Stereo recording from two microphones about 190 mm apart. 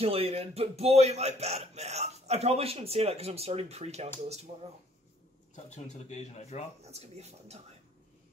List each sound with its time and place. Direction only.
0.0 s a man's voice: 30° right (ahead or behind)
5.7 s speech: 35° left (ahead or behind)
6.8 s a man's voice: 35° right (ahead or behind)